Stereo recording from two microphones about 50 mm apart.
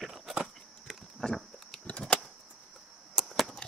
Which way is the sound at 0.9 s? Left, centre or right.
Centre.